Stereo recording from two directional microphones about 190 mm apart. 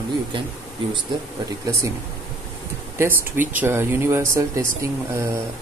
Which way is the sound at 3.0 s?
10° right (ahead or behind).